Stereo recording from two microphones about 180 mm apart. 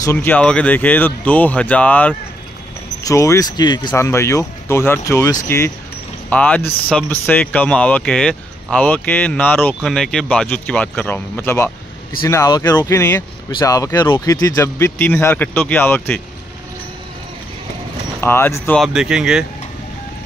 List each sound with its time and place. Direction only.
0.0 s speech: 10° left (ahead or behind)
3.0 s speech: 20° left (ahead or behind)
6.3 s speech: 10° left (ahead or behind)
18.2 s speech: 15° left (ahead or behind)
18.8 s speech: 5° right (ahead or behind)